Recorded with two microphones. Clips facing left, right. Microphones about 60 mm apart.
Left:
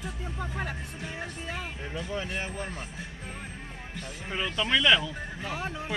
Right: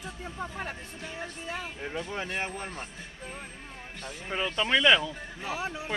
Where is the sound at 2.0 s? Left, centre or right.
Right.